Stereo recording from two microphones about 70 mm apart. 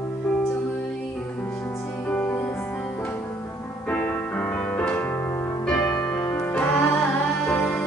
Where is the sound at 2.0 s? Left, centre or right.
Left.